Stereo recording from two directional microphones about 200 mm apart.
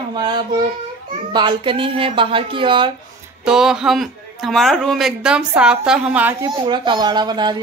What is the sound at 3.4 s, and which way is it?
A man's voice, 5° right (ahead or behind).